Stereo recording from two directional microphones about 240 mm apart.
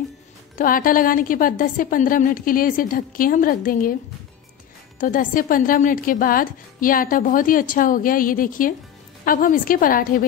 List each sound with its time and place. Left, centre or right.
0.6 s a woman's voice: left
5.0 s a woman's voice: left